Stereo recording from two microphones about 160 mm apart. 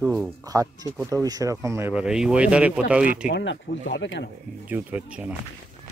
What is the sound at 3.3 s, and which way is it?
Speech, 90° left.